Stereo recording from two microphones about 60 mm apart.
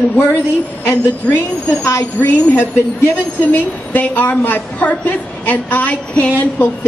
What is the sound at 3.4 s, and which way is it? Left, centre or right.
A woman's voice, left.